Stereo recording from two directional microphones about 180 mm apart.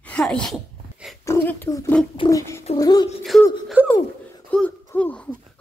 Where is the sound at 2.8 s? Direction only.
20° left (ahead or behind).